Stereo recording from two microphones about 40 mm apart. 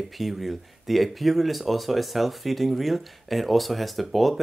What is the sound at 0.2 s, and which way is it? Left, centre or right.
Speech, centre.